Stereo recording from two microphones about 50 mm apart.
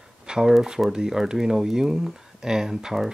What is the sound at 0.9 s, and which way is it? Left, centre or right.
Speech, centre.